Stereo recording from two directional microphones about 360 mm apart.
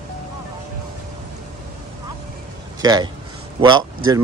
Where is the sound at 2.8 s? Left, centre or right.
Centre.